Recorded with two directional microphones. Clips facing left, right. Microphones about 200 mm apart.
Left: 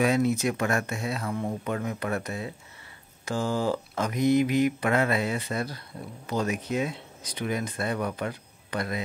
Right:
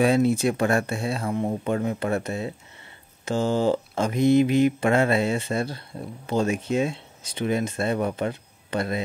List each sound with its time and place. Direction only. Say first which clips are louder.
0.0 s speech: right 4 dB; 30° right (ahead or behind)